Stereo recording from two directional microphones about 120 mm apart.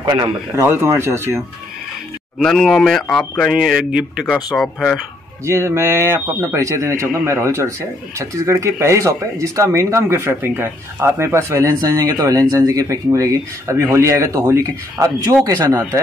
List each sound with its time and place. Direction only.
0.0 s a man's voice: 35° right (ahead or behind)
0.6 s speech: 20° right (ahead or behind)
2.3 s speech: centre (ahead or behind)
5.4 s speech: 25° right (ahead or behind)